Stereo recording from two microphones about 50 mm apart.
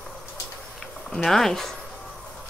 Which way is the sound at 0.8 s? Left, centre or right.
Centre.